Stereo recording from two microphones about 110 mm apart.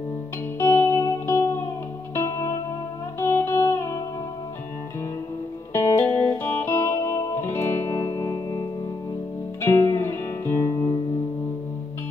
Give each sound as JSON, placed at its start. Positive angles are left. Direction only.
{"t": 0.6, "sound": "music", "side_deg": 25}
{"t": 5.7, "sound": "music", "side_deg": 20}
{"t": 9.7, "sound": "music", "side_deg": 25}